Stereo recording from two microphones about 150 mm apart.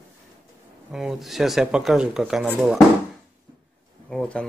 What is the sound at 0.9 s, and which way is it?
Speech, 5° right (ahead or behind).